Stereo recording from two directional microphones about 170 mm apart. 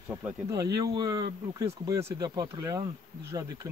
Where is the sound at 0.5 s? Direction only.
20° right (ahead or behind).